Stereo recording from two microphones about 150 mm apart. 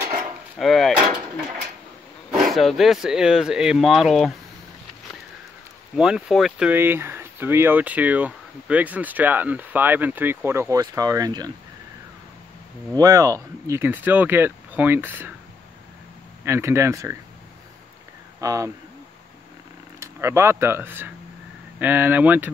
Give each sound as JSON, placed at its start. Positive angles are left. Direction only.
{"t": 0.6, "sound": "door", "side_deg": 0}
{"t": 2.3, "sound": "speech", "side_deg": 0}
{"t": 5.9, "sound": "speech", "side_deg": -5}
{"t": 6.7, "sound": "speech", "side_deg": -15}
{"t": 12.9, "sound": "speech", "side_deg": -25}
{"t": 16.4, "sound": "speech", "side_deg": -15}
{"t": 18.4, "sound": "speech", "side_deg": -20}
{"t": 20.0, "sound": "speech", "side_deg": -20}